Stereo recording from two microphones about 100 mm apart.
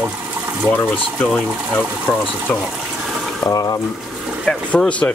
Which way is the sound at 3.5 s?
35° left (ahead or behind).